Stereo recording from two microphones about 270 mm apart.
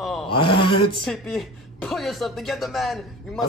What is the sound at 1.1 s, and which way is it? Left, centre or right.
Speech, centre.